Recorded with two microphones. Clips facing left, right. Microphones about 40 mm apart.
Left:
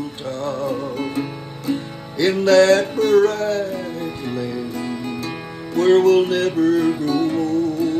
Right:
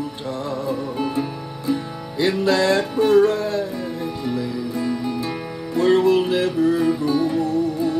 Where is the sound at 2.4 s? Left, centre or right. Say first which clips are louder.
Left 7 dB; right.